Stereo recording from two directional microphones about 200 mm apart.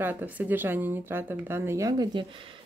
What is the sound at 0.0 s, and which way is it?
Speech, 10° right (ahead or behind).